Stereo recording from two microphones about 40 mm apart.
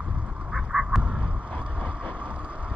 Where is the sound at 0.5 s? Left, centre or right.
Centre.